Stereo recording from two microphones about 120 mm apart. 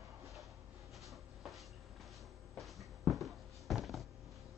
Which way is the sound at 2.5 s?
Centre (ahead or behind).